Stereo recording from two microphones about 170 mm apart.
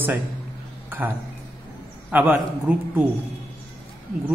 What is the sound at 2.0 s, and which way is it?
Speech, 10° right (ahead or behind).